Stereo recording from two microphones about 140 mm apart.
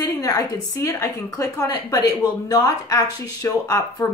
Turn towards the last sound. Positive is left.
turn(degrees=25)  # may be behind; listen again after turning